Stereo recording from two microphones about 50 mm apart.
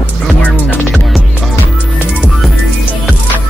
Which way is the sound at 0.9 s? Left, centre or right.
Centre.